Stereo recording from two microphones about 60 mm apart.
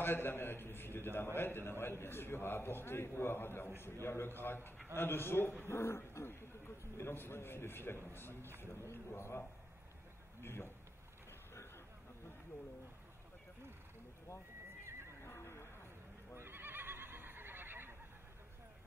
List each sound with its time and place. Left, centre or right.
0.0 s a man's voice: left
10.4 s a man's voice: left
15.2 s a sound: left
16.3 s neigh: right